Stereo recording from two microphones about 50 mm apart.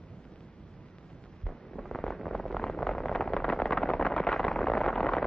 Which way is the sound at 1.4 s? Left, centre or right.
Centre.